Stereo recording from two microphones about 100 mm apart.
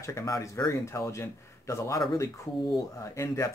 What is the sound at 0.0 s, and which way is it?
Speech, 30° left (ahead or behind).